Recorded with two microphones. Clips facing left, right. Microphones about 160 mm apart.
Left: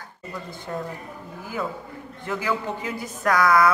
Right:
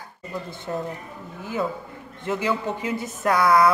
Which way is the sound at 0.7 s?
25° right (ahead or behind).